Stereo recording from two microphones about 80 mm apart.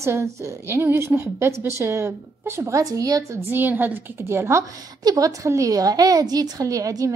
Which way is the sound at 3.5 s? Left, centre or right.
Right.